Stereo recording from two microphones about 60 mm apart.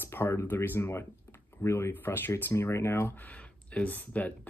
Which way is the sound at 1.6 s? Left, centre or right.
Left.